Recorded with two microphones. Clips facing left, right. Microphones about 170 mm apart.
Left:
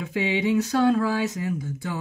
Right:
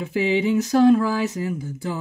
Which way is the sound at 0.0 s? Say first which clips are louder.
Right 4 dB; 30° right (ahead or behind).